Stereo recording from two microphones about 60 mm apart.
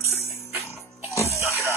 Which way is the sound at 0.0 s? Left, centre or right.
Left.